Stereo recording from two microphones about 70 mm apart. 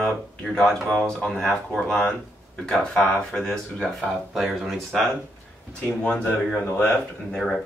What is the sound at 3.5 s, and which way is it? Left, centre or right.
Speech, centre.